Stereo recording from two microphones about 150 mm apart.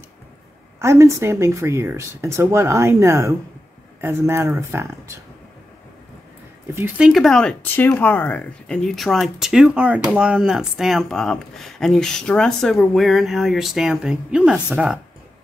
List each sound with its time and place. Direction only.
0.7 s speech: 20° right (ahead or behind)
7.0 s speech: centre (ahead or behind)